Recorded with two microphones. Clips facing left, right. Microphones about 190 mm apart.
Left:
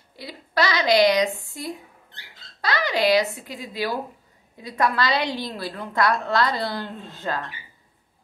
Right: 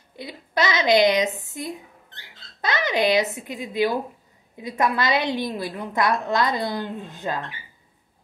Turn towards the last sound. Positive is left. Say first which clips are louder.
# right 1 dB
turn(degrees=-20)  # may be behind; listen again after turning